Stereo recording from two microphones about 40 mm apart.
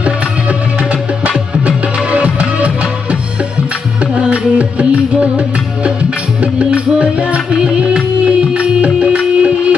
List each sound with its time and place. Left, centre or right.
1.7 s music: right